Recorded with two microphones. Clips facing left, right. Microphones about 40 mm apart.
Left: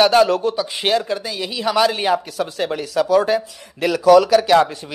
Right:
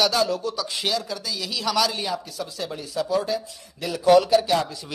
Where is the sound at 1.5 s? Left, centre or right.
Left.